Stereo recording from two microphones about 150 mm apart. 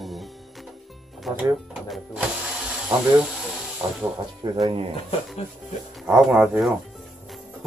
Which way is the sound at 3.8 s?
20° right (ahead or behind).